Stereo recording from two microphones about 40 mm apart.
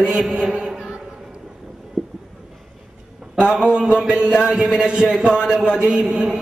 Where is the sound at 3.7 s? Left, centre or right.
Right.